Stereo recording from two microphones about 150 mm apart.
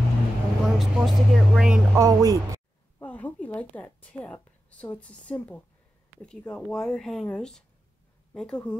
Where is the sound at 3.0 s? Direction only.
10° left (ahead or behind).